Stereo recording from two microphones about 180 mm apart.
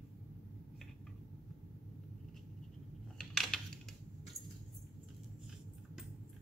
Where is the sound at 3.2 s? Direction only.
5° left (ahead or behind).